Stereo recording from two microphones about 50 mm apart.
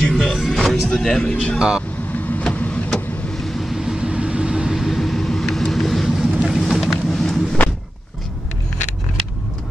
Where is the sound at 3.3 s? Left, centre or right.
Centre.